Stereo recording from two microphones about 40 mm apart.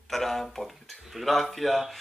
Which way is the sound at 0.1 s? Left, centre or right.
Centre.